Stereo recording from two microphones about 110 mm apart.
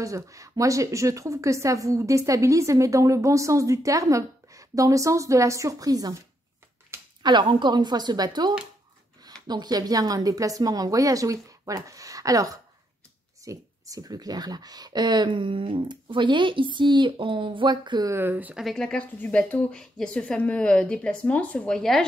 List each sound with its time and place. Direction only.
0.0 s a woman's voice: 30° right (ahead or behind)
6.9 s a sound: 25° right (ahead or behind)
7.2 s a woman's voice: 45° right (ahead or behind)
18.1 s speech: 15° right (ahead or behind)
18.6 s a woman's voice: 5° left (ahead or behind)